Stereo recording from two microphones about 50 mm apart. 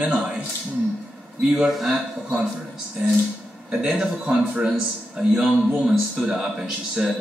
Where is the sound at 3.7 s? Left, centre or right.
Centre.